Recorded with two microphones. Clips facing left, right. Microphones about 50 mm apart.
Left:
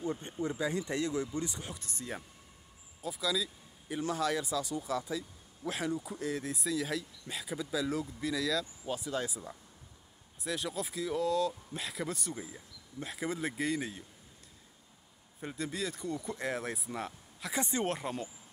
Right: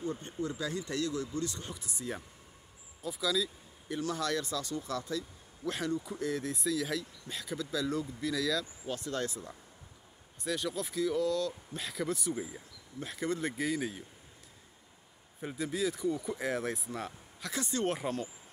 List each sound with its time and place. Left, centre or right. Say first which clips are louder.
0.0 s speech: left 1 dB; left
1.8 s speech: right 2 dB; centre
15.4 s speech: right 4 dB; centre
17.6 s speech: left 1 dB; left
17.8 s speech: right 2 dB; centre